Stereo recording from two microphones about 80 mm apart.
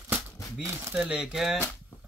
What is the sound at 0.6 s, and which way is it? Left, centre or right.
Speech, right.